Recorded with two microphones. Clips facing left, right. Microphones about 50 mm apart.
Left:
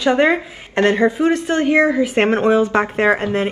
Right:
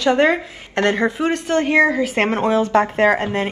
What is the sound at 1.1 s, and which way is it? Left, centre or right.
Speech, right.